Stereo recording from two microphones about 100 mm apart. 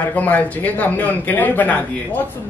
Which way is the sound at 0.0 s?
15° left (ahead or behind).